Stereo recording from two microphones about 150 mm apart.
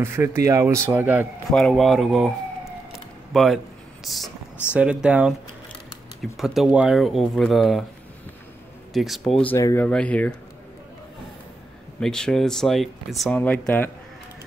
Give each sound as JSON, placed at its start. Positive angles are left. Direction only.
{"t": 0.0, "sound": "speech", "side_deg": -15}
{"t": 1.5, "sound": "police car", "side_deg": 5}
{"t": 4.7, "sound": "speech", "side_deg": -10}
{"t": 6.3, "sound": "speech", "side_deg": 0}
{"t": 8.9, "sound": "speech", "side_deg": 0}
{"t": 9.6, "sound": "speech", "side_deg": 20}
{"t": 9.8, "sound": "speech", "side_deg": 10}
{"t": 12.0, "sound": "speech", "side_deg": 5}